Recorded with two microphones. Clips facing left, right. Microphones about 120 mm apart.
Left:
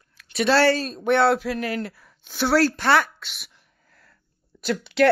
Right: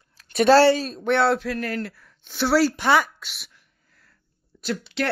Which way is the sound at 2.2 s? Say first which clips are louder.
Even; centre (ahead or behind).